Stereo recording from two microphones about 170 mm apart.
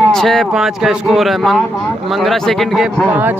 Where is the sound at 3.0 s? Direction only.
10° right (ahead or behind).